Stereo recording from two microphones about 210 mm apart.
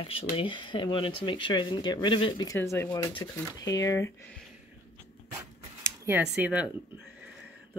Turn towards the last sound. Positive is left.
turn(degrees=-5)  # may be behind; listen again after turning